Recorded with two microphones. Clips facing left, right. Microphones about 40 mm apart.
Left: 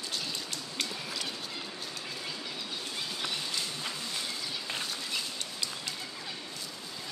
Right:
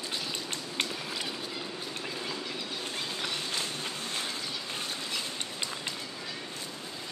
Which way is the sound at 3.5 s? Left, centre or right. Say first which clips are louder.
Right 1 dB; right.